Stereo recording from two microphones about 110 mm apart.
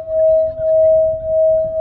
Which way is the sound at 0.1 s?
20° right (ahead or behind).